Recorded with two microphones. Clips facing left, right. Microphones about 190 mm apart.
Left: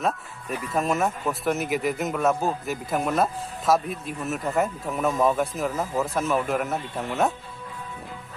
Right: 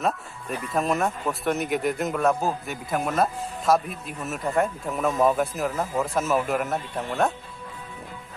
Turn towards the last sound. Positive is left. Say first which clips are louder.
# even
turn(degrees=0)  # may be behind; listen again after turning